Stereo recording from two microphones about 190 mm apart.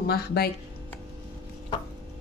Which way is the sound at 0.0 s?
55° left (ahead or behind).